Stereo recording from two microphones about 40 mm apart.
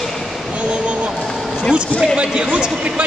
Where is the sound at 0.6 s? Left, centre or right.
Right.